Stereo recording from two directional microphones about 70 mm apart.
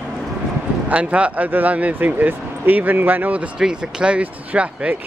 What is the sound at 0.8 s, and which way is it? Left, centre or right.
Speech, centre.